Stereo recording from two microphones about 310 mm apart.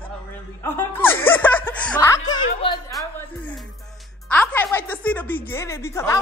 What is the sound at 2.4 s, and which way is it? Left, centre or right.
Speech, centre.